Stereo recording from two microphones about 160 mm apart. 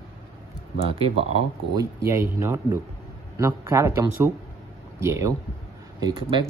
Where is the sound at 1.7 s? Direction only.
15° right (ahead or behind).